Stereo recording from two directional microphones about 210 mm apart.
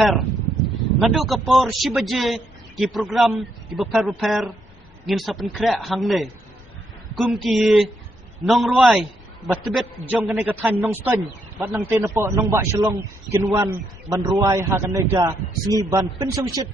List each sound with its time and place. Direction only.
1.0 s a man's voice: centre (ahead or behind); by 16.6 s 20° right (ahead or behind)